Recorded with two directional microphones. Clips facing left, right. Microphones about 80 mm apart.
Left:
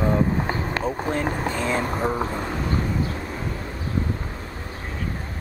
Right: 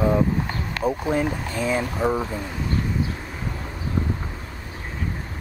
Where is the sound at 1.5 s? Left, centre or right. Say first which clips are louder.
Right 1 dB; centre.